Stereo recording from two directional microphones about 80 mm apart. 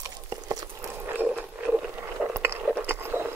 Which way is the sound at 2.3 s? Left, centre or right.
Right.